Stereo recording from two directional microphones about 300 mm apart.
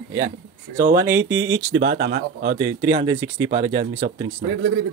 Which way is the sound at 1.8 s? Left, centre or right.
Right.